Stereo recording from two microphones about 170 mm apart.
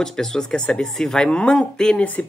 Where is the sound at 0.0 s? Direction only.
5° left (ahead or behind).